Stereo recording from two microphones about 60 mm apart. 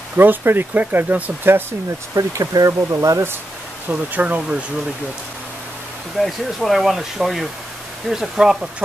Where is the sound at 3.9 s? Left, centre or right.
Right.